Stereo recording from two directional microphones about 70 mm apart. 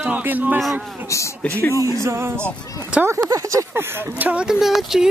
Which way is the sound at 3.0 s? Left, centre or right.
Right.